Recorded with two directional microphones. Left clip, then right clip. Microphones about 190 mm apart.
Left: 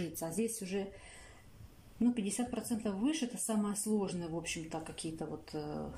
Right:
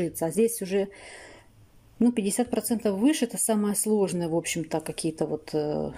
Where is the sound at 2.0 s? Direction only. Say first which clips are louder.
Right 10 dB; 45° right (ahead or behind).